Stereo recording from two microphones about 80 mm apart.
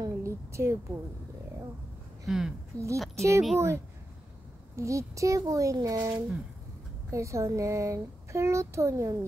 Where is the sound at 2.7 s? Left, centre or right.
Right.